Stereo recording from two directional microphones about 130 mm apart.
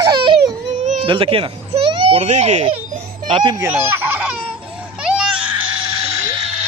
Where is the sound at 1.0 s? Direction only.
40° right (ahead or behind).